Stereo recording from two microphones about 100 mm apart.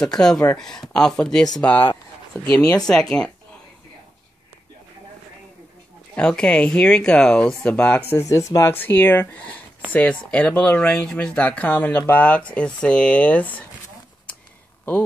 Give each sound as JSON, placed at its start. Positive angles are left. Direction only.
{"t": 0.0, "sound": "speech", "side_deg": 5}
{"t": 2.6, "sound": "speech", "side_deg": 35}
{"t": 2.9, "sound": "speech", "side_deg": 5}
{"t": 6.1, "sound": "speech", "side_deg": 10}
{"t": 8.2, "sound": "speech", "side_deg": 30}
{"t": 8.7, "sound": "speech", "side_deg": 20}